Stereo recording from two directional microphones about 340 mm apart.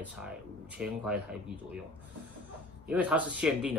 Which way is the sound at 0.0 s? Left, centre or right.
Centre.